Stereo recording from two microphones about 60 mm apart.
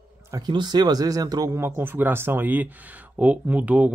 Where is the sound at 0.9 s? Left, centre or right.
Right.